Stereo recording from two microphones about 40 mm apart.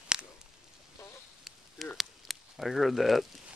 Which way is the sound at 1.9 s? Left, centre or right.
Centre.